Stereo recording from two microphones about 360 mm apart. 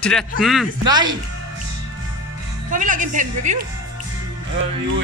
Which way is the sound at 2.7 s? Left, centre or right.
Right.